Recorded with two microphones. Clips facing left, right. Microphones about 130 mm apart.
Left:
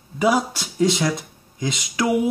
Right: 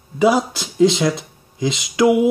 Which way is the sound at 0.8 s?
25° right (ahead or behind).